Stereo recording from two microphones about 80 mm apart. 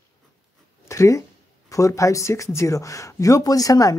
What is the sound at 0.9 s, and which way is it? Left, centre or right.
Speech, left.